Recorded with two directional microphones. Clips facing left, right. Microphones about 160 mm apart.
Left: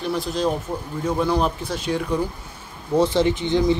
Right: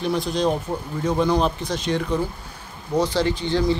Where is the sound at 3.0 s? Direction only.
20° left (ahead or behind).